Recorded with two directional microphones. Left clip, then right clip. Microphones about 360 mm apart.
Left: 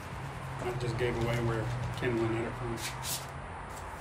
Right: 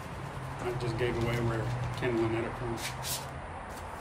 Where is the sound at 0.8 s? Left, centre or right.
Centre.